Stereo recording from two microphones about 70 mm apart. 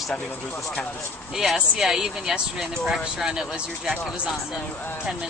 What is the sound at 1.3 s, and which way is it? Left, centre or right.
Speech, centre.